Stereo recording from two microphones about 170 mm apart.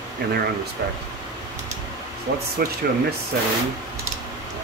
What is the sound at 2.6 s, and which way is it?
Speech, 65° right (ahead or behind).